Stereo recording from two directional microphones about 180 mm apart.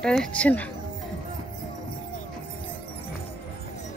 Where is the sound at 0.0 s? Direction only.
5° left (ahead or behind).